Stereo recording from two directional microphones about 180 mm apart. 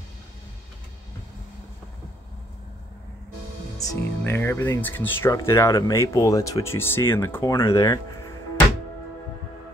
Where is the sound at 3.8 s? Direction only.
15° left (ahead or behind).